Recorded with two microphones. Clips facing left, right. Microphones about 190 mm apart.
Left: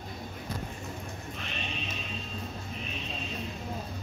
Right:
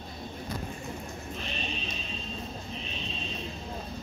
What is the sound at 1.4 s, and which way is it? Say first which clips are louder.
Music: right 1 dB; 35° right (ahead or behind).